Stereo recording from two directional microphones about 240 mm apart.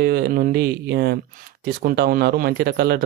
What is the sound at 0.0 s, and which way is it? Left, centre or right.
Speech, right.